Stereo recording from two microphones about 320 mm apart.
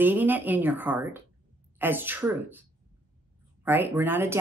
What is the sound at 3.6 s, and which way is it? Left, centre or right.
Speech, centre.